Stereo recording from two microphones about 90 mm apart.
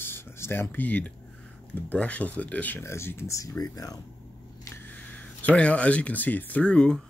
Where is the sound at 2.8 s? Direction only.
30° left (ahead or behind).